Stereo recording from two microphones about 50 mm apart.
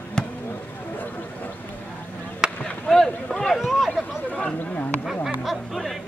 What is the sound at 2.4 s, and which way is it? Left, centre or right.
Chop, centre.